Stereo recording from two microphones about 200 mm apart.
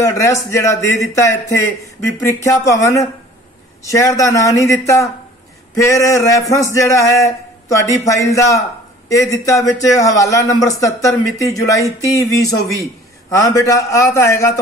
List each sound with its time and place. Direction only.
0.0 s a man's voice: 15° left (ahead or behind)